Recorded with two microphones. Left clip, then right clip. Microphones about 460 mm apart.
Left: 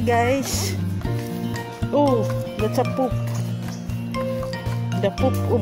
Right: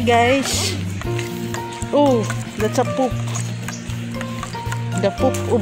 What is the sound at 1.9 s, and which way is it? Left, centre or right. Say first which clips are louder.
Music: right 3 dB; left.